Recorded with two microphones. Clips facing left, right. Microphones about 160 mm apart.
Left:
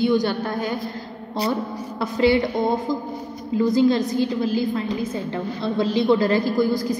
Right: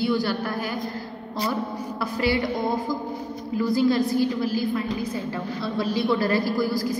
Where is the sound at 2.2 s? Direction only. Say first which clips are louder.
Left 6 dB; 20° left (ahead or behind).